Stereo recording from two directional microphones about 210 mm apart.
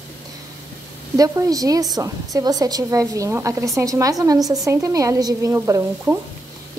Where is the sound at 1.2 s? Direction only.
15° right (ahead or behind).